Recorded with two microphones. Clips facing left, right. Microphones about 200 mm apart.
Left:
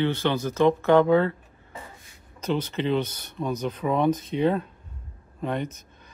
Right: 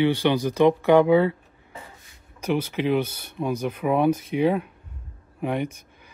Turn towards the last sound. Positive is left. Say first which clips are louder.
# right 2 dB
turn(degrees=-10)  # may be behind; listen again after turning